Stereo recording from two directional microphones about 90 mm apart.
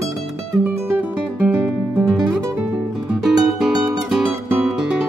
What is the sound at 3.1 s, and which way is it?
Music, centre (ahead or behind).